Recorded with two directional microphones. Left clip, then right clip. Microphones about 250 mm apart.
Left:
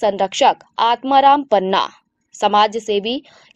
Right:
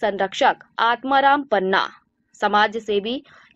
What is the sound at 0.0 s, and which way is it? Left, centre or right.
A woman's voice, left.